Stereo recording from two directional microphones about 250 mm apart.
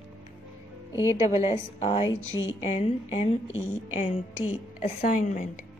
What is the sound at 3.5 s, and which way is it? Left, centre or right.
Speech, centre.